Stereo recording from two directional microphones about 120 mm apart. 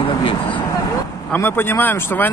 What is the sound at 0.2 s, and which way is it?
Vehicle, 45° left (ahead or behind).